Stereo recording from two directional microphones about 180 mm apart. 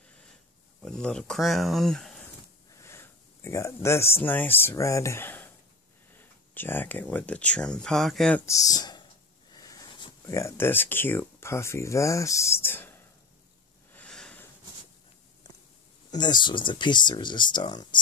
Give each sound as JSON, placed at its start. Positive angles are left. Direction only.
{"t": 0.8, "sound": "speech", "side_deg": 5}
{"t": 2.8, "sound": "a sound", "side_deg": 15}
{"t": 4.2, "sound": "speech", "side_deg": 10}
{"t": 8.5, "sound": "speech", "side_deg": 20}
{"t": 13.9, "sound": "a sound", "side_deg": 5}
{"t": 16.1, "sound": "speech", "side_deg": 25}